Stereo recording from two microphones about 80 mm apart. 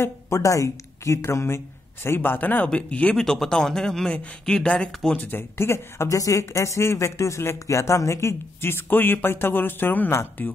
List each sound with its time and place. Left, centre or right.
0.0 s a woman's voice: left; by 3.2 s centre
3.2 s speech: centre; by 10.5 s left